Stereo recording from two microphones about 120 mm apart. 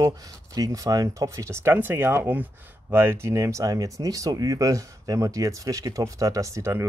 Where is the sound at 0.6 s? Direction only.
30° right (ahead or behind).